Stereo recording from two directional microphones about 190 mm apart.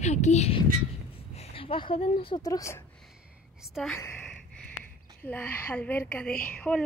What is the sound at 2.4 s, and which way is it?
Speech, 15° left (ahead or behind).